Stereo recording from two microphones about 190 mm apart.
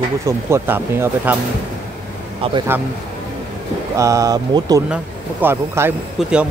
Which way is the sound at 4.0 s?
15° right (ahead or behind).